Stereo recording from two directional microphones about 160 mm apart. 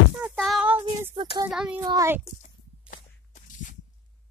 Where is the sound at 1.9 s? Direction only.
20° right (ahead or behind).